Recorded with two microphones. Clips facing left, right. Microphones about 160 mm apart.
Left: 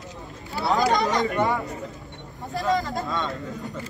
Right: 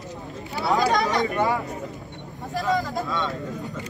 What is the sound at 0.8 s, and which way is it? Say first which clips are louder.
Speech: left 1 dB; centre (ahead or behind).